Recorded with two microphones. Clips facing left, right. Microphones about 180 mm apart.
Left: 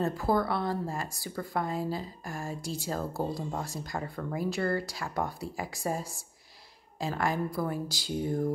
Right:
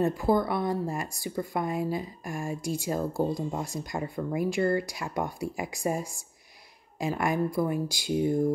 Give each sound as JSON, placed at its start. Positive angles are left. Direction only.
{"t": 0.0, "sound": "a woman's voice", "side_deg": -15}